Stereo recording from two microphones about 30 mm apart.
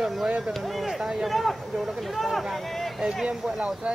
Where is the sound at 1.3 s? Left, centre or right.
Centre.